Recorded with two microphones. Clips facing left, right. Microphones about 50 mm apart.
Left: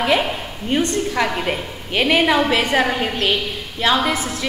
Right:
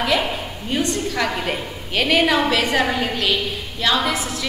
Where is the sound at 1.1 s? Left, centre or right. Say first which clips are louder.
Left 2 dB; centre.